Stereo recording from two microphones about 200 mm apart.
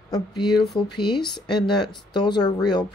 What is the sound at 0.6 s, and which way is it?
Speech, centre (ahead or behind).